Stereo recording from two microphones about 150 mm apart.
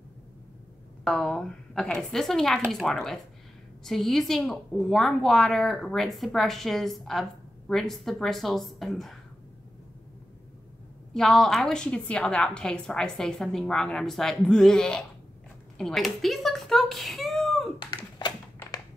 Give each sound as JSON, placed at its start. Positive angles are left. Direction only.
{"t": 1.0, "sound": "a woman's voice", "side_deg": 5}
{"t": 11.1, "sound": "a woman's voice", "side_deg": 0}
{"t": 17.7, "sound": "a sound", "side_deg": 30}